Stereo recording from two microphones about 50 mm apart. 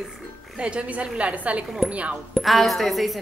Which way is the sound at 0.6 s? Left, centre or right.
Right.